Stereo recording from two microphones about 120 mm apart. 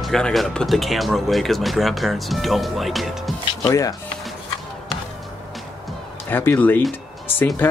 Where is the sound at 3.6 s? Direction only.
30° left (ahead or behind).